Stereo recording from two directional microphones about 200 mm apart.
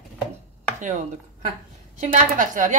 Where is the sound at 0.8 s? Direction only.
35° right (ahead or behind).